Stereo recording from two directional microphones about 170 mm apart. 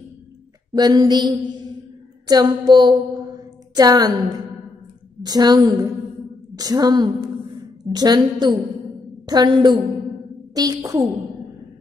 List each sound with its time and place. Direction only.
0.7 s a woman's voice: 25° right (ahead or behind)